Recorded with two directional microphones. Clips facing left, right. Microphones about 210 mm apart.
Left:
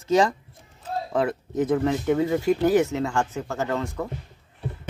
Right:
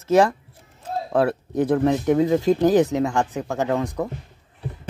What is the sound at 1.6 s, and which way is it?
Speech, 15° right (ahead or behind).